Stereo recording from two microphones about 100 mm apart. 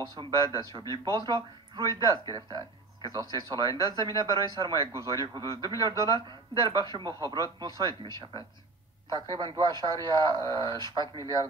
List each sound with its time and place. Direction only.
0.7 s speech: 40° right (ahead or behind)